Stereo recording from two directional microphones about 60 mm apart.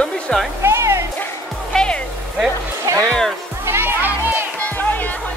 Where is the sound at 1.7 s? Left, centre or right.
Centre.